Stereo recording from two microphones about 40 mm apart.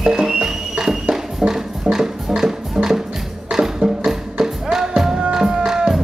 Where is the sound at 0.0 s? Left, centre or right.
Centre.